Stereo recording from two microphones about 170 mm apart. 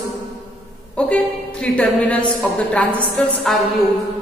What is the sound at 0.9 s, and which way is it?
A woman's voice, 5° left (ahead or behind).